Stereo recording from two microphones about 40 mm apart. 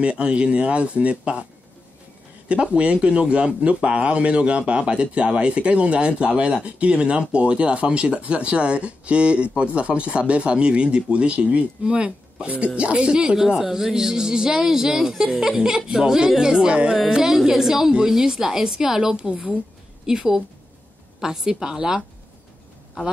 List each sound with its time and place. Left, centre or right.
0.0 s speech: right
2.4 s speech: right
13.4 s speech: centre
17.1 s speech: centre
18.9 s speech: right
20.1 s speech: centre